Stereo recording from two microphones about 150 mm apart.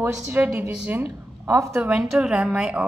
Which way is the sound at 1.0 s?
20° right (ahead or behind).